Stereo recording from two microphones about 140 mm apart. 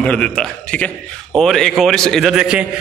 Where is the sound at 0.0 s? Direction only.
5° left (ahead or behind).